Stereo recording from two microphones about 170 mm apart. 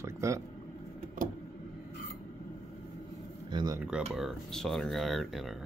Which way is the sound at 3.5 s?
20° right (ahead or behind).